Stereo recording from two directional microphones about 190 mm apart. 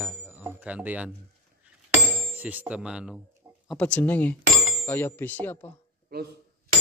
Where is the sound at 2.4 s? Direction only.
10° right (ahead or behind).